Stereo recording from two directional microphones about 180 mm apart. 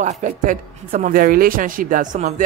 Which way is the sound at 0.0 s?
45° right (ahead or behind).